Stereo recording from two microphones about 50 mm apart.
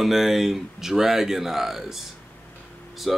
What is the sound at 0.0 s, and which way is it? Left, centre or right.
Speech, centre.